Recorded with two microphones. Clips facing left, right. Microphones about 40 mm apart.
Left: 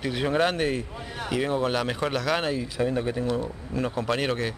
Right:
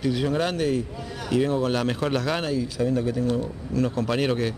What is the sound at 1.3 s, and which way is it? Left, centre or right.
Speech, centre.